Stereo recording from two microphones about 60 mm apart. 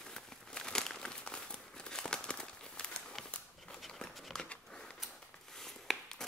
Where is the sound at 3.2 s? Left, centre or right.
Centre.